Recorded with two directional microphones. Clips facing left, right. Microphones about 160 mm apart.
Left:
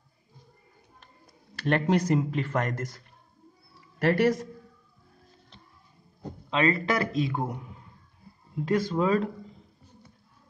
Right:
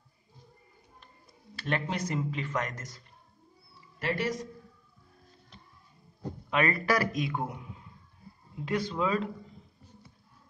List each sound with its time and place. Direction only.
1.5 s speech: 40° left (ahead or behind)
4.0 s a man's voice: 60° left (ahead or behind)
6.5 s a man's voice: 25° left (ahead or behind)
8.5 s speech: 40° left (ahead or behind)